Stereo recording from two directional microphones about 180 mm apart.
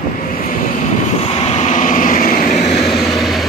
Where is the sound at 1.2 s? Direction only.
35° left (ahead or behind).